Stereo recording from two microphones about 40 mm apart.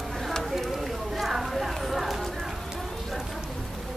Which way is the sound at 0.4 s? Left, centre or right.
Centre.